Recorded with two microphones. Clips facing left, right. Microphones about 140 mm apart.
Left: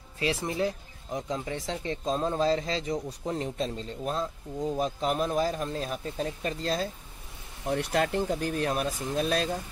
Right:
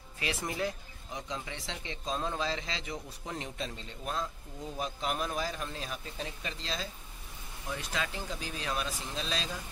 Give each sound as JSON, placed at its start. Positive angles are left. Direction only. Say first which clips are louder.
{"t": 0.2, "sound": "speech", "louder": "left 6 dB", "side_deg": 30}
{"t": 1.1, "sound": "speech", "louder": "left 8 dB", "side_deg": 45}
{"t": 7.6, "sound": "speech", "louder": "left 10 dB", "side_deg": 60}